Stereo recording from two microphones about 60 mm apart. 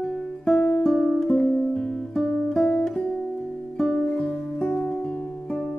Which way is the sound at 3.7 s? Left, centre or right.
Centre.